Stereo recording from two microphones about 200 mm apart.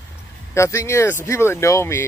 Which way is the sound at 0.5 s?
15° left (ahead or behind).